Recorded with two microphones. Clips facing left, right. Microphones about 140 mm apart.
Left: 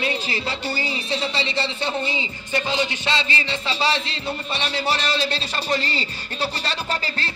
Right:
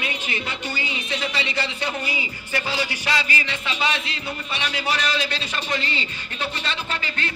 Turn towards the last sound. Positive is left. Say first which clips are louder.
# left 2 dB
turn(degrees=35)  # may be behind; listen again after turning